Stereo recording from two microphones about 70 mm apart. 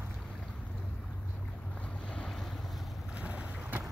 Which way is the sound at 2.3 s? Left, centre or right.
Centre.